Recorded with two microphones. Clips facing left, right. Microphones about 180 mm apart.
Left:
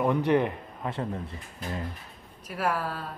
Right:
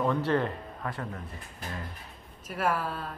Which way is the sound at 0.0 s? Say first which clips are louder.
Left 3 dB; 15° left (ahead or behind).